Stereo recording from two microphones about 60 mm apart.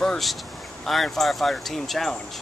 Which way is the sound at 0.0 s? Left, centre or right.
Centre.